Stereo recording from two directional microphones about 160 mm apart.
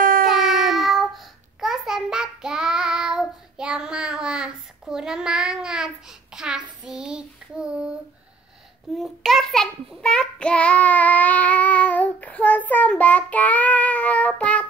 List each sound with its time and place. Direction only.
0.0 s child singing: 60° right (ahead or behind)
0.3 s child singing: centre (ahead or behind)
8.9 s child singing: centre (ahead or behind)